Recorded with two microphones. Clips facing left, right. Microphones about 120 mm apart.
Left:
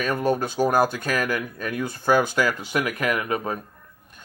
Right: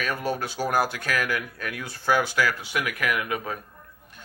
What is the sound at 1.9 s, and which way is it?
Speech, 45° left (ahead or behind).